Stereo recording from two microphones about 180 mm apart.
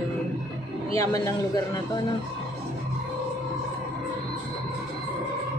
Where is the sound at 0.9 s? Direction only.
20° left (ahead or behind).